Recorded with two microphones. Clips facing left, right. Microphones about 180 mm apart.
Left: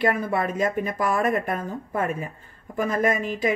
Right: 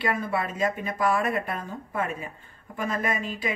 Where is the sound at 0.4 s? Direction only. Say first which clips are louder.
Left 4 dB; 45° left (ahead or behind).